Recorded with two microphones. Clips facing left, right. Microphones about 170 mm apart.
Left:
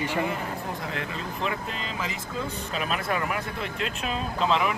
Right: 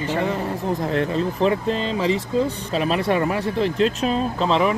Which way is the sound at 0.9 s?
35° right (ahead or behind).